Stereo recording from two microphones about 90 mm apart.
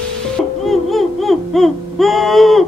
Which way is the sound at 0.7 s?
Centre (ahead or behind).